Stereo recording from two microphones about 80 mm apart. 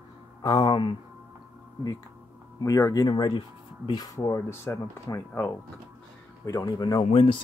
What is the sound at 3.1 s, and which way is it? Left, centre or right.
Speech, left.